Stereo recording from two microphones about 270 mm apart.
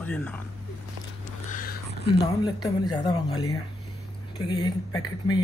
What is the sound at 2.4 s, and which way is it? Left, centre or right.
Speech, centre.